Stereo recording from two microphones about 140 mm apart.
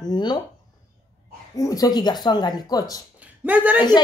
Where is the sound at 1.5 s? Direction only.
25° left (ahead or behind).